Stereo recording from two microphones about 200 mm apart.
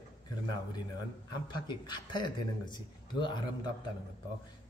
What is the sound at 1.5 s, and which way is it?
A man's voice, 20° left (ahead or behind).